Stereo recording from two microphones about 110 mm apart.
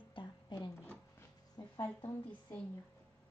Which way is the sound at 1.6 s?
35° left (ahead or behind).